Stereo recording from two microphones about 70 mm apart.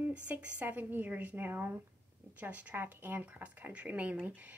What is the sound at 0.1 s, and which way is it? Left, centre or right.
A woman's voice, centre.